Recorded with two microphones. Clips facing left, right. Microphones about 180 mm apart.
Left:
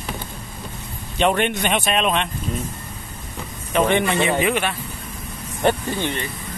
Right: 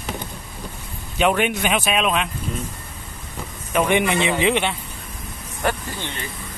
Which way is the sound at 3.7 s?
15° right (ahead or behind).